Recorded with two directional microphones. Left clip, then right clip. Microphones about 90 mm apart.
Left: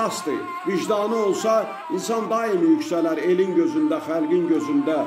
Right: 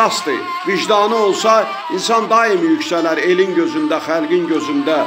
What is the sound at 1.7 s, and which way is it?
Speech, 25° right (ahead or behind).